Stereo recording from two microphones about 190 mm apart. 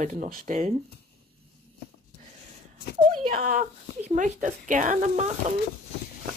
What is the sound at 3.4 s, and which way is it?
Speech, 45° right (ahead or behind).